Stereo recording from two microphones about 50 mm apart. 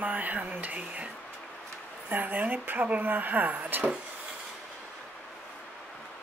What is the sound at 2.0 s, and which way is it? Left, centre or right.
Speech, right.